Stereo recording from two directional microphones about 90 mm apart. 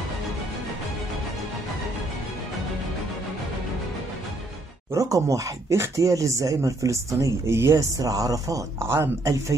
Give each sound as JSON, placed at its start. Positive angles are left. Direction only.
{"t": 4.9, "sound": "speech", "side_deg": -40}
{"t": 8.0, "sound": "speech", "side_deg": -40}
{"t": 8.8, "sound": "speech", "side_deg": -25}
{"t": 9.2, "sound": "speech", "side_deg": -40}